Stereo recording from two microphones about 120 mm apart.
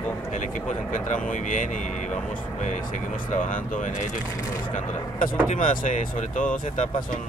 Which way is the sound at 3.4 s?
90° left.